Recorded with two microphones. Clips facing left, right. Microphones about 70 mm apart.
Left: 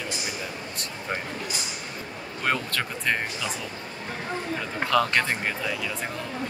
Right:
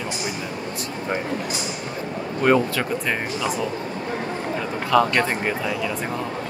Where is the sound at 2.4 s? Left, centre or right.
Centre.